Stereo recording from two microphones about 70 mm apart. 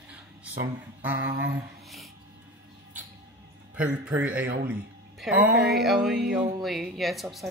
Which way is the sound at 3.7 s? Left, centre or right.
Centre.